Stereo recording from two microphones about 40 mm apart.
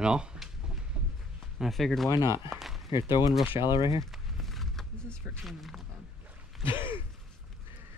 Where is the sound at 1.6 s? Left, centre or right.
Centre.